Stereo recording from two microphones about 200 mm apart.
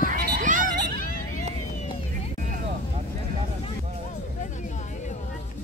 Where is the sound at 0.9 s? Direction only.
45° left (ahead or behind).